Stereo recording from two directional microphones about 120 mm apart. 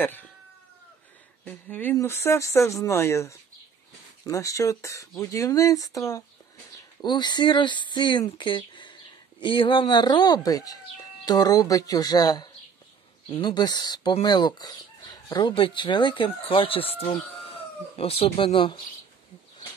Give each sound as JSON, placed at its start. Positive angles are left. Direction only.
{"t": 0.0, "sound": "speech", "side_deg": 15}
{"t": 1.4, "sound": "speech", "side_deg": 15}